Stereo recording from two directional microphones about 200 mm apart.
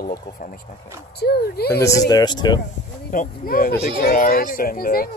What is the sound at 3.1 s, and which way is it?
Speech, 45° left (ahead or behind).